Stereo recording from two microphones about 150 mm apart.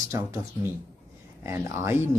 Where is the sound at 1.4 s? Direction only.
20° right (ahead or behind).